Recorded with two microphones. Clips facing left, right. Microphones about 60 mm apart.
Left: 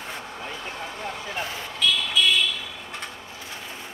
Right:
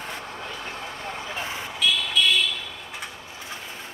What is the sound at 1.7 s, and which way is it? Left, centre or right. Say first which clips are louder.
Vehicle: even; centre.